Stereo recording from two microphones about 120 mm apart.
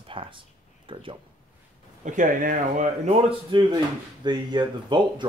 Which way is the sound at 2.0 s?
90° right.